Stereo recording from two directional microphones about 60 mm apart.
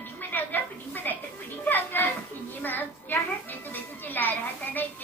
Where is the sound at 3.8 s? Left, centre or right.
Left.